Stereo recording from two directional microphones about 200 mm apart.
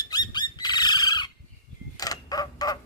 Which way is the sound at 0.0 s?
20° left (ahead or behind).